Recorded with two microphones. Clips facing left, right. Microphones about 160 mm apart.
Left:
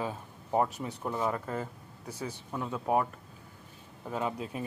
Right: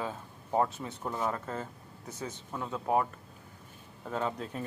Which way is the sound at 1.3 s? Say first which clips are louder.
Left 2 dB; 15° left (ahead or behind).